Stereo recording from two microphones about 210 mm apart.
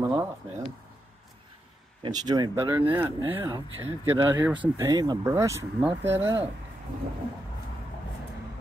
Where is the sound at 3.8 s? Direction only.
20° right (ahead or behind).